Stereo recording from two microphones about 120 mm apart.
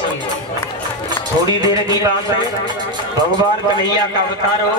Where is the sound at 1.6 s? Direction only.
35° right (ahead or behind).